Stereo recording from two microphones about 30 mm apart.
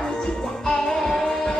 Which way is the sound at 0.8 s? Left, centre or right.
Centre.